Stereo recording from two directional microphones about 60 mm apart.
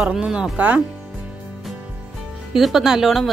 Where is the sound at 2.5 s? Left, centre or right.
Centre.